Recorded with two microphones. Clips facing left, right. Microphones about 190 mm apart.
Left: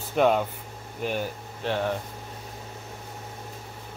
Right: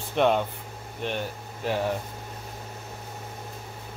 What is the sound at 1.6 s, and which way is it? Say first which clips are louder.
Speech: even; 5° right (ahead or behind).